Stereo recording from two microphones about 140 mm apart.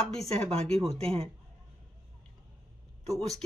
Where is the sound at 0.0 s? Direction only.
5° left (ahead or behind).